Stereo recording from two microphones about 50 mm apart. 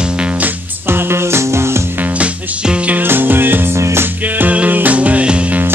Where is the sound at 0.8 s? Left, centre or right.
Right.